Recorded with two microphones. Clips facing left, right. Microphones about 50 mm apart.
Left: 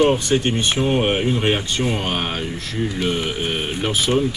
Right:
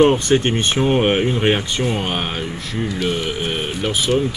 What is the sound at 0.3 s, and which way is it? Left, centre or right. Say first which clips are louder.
Speech: right 2 dB; right.